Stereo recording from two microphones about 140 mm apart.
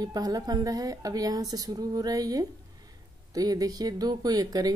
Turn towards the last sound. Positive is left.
turn(degrees=-25)  # may be behind; listen again after turning